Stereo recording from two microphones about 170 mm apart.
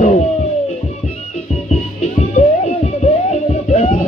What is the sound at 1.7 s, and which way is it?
Music, 40° left (ahead or behind).